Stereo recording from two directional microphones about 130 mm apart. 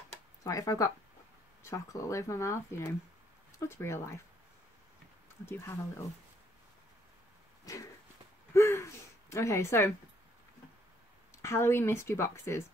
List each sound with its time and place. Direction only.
0.4 s speech: 25° left (ahead or behind)
5.4 s speech: 20° left (ahead or behind)
7.7 s speech: 25° left (ahead or behind)
8.5 s a sound: 20° left (ahead or behind)
9.3 s speech: 20° left (ahead or behind)
11.3 s speech: 20° left (ahead or behind)